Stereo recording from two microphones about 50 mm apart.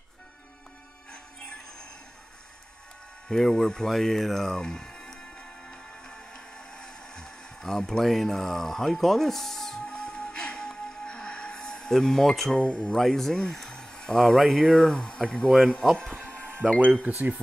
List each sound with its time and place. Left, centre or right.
1.1 s music: centre
3.3 s speech: centre
5.7 s music: centre
9.8 s music: centre
12.6 s speech: centre
12.9 s speech: centre
16.8 s speech: right